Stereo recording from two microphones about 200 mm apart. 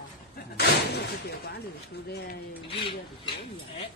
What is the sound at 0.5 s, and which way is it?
Speech, 55° left (ahead or behind).